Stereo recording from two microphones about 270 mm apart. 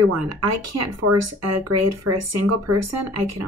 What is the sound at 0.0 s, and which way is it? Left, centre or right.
Speech, right.